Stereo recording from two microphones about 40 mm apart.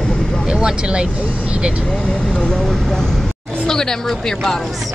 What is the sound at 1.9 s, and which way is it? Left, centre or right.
Speech, left.